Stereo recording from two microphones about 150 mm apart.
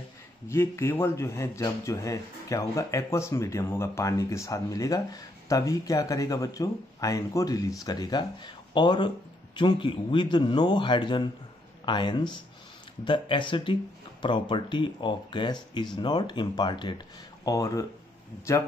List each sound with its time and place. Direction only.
0.5 s speech: 15° left (ahead or behind)